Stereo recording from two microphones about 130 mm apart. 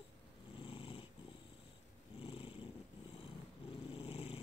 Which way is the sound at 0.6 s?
45° left (ahead or behind).